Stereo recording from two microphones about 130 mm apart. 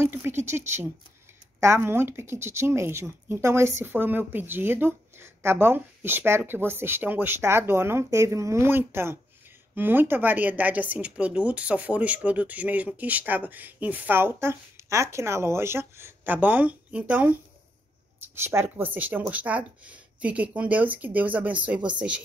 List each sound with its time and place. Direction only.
0.0 s a woman's voice: 20° right (ahead or behind)